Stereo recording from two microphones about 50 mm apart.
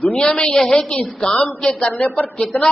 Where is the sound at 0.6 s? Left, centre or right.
Centre.